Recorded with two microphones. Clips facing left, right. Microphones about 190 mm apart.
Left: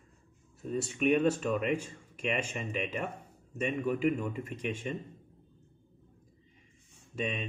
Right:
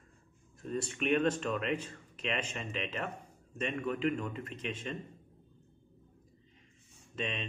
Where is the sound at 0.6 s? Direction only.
5° left (ahead or behind).